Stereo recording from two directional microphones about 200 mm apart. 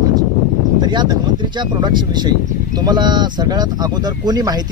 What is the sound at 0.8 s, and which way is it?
Speech, 20° right (ahead or behind).